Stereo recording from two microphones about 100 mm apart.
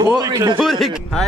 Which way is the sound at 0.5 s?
Centre (ahead or behind).